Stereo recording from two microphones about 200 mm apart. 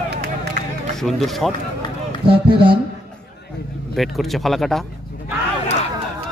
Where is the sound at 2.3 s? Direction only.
25° right (ahead or behind).